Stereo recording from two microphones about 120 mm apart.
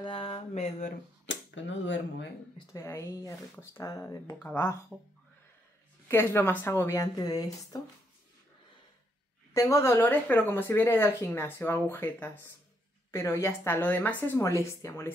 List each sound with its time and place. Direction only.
0.0 s a sound: 50° left (ahead or behind); by 0.9 s 75° left (ahead or behind)
2.7 s speech: 25° left (ahead or behind)
4.9 s speech: centre (ahead or behind)
6.0 s speech: 20° left (ahead or behind)
9.5 s speech: 25° left (ahead or behind)